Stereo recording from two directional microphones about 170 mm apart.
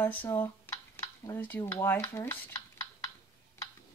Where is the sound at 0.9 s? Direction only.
15° left (ahead or behind).